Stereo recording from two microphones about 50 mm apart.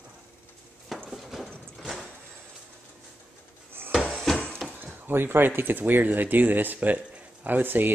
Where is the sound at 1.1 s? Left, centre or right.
Centre.